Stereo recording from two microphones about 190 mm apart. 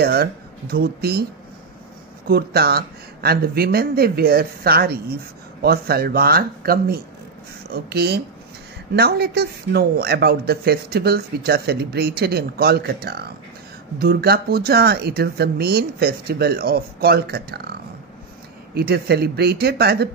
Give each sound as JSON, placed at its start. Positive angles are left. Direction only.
{"t": 0.0, "sound": "speech", "side_deg": -55}
{"t": 2.2, "sound": "a man's voice", "side_deg": -55}
{"t": 18.8, "sound": "a man's voice", "side_deg": -55}